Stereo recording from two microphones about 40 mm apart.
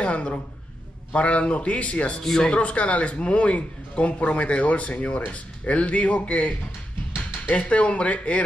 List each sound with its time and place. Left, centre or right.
0.0 s a sound: left
1.1 s a man's voice: left
7.5 s a man's voice: left